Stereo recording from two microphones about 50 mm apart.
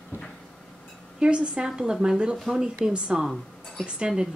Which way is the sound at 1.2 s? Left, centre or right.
Right.